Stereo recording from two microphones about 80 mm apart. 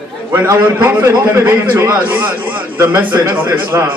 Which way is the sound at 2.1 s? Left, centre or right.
Right.